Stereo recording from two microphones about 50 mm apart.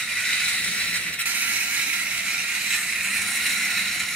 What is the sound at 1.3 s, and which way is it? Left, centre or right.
Vehicle, right.